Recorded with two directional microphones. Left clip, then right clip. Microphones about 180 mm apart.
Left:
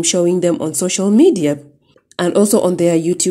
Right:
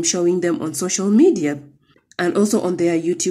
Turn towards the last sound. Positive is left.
turn(degrees=30)  # may be behind; listen again after turning